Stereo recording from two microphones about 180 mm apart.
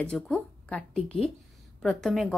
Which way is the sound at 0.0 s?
5° left (ahead or behind).